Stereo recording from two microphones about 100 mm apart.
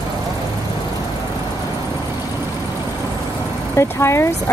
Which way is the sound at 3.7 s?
25° left (ahead or behind).